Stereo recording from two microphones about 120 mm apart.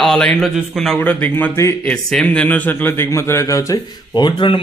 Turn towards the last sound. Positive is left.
turn(degrees=40)  # may be behind; listen again after turning